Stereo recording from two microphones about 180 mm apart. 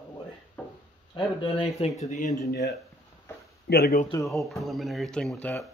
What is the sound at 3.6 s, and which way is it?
Speech, 65° left (ahead or behind).